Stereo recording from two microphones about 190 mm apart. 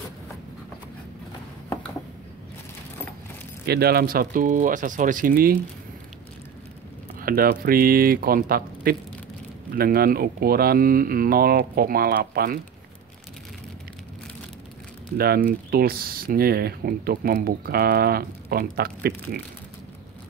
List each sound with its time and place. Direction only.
3.6 s speech: 55° right (ahead or behind)
7.2 s speech: 50° right (ahead or behind)
15.1 s speech: 55° right (ahead or behind)